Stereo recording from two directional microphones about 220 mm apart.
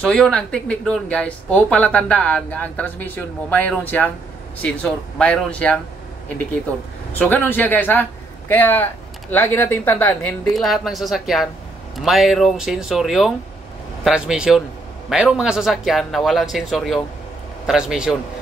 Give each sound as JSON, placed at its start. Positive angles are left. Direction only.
{"t": 0.0, "sound": "speech", "side_deg": 5}
{"t": 7.2, "sound": "a man's voice", "side_deg": 10}